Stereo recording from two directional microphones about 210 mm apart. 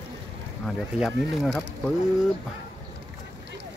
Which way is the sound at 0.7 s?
Centre (ahead or behind).